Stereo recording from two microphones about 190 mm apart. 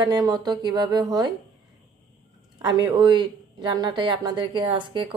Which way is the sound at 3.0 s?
25° right (ahead or behind).